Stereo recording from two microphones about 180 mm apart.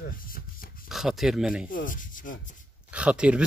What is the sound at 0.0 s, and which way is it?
Dog, 50° left (ahead or behind).